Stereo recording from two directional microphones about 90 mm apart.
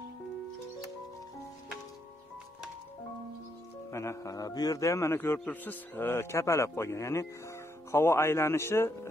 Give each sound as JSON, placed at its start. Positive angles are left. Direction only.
{"t": 3.9, "sound": "a man's voice", "side_deg": 30}